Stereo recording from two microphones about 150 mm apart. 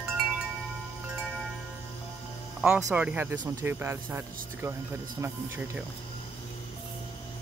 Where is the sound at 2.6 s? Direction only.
5° right (ahead or behind).